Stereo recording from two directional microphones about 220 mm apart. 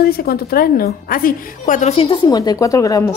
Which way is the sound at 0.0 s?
45° left (ahead or behind).